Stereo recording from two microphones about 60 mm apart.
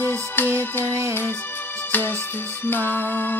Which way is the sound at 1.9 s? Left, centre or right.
Left.